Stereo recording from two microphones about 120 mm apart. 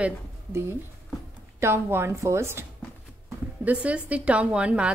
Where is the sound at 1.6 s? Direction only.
20° right (ahead or behind).